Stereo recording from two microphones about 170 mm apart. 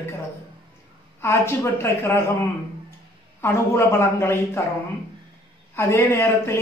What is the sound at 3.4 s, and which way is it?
Speech, 15° left (ahead or behind).